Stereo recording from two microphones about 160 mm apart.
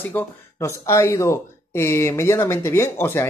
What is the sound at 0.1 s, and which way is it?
Speech, 15° left (ahead or behind).